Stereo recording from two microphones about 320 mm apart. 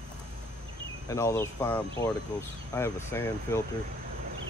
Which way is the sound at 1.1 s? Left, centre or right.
Centre.